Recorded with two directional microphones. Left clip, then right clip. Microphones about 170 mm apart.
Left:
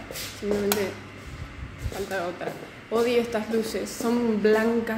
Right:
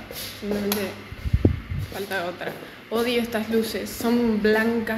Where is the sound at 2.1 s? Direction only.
10° left (ahead or behind).